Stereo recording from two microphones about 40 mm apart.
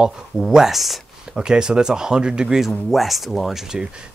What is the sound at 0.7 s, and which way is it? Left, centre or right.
Speech, centre.